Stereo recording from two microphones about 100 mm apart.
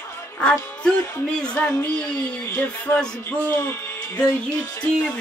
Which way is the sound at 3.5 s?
25° left (ahead or behind).